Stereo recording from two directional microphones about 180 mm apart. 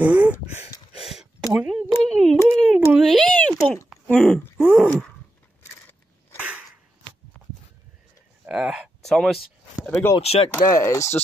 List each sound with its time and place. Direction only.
0.0 s speech: 10° right (ahead or behind)
0.9 s a sound: centre (ahead or behind)
4.6 s groan: 10° right (ahead or behind)
6.3 s dog: 10° right (ahead or behind)
7.3 s a sound: centre (ahead or behind)
10.1 s speech: 35° left (ahead or behind)
10.6 s speech: 15° left (ahead or behind)